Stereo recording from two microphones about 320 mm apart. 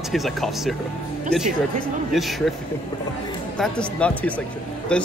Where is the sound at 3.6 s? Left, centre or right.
Centre.